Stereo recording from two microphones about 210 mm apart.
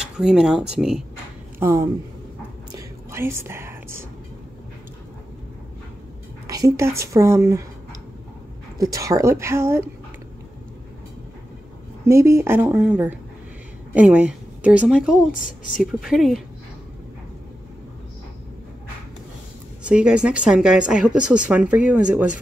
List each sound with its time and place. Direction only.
0.0 s speech: 5° right (ahead or behind)
2.7 s whispering: 10° right (ahead or behind)
6.4 s speech: 15° right (ahead or behind)
8.7 s speech: 15° right (ahead or behind)
12.1 s a woman's voice: 15° right (ahead or behind)
15.3 s a woman's voice: 40° left (ahead or behind)
15.8 s speech: centre (ahead or behind)
19.8 s speech: 5° right (ahead or behind)